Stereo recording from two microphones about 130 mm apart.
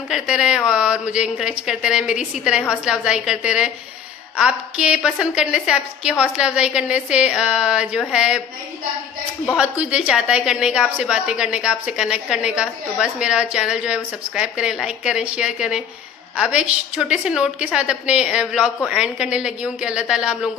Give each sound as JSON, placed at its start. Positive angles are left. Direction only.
{"t": 0.1, "sound": "a woman's voice", "side_deg": -5}
{"t": 9.6, "sound": "a woman's voice", "side_deg": -10}